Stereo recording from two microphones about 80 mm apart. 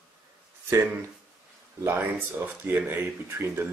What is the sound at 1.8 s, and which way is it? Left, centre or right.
Speech, right.